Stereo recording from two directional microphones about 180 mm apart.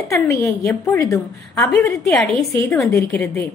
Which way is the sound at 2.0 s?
Centre (ahead or behind).